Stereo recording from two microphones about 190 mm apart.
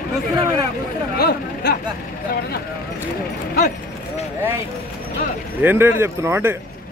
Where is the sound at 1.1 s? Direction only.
55° left (ahead or behind).